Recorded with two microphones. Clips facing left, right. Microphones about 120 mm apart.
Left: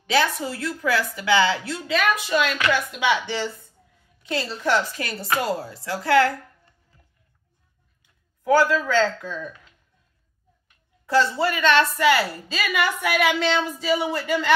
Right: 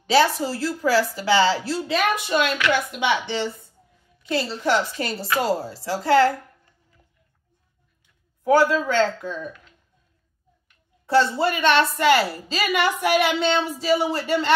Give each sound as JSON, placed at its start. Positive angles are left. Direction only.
{"t": 0.0, "sound": "a woman's voice", "side_deg": -30}
{"t": 8.5, "sound": "speech", "side_deg": -20}
{"t": 11.1, "sound": "a woman's voice", "side_deg": -25}